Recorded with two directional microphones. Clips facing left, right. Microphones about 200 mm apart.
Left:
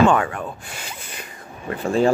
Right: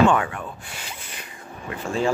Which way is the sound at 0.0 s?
45° left (ahead or behind).